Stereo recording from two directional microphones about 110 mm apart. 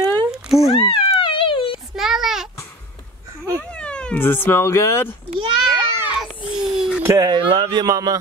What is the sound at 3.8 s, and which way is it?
Cat, 10° left (ahead or behind).